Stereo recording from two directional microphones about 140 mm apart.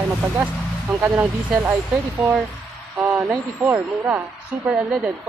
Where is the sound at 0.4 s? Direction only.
10° right (ahead or behind).